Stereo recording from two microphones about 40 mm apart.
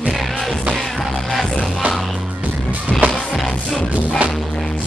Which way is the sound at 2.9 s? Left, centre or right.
Centre.